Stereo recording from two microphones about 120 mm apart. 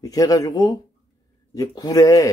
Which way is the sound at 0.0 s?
30° left (ahead or behind).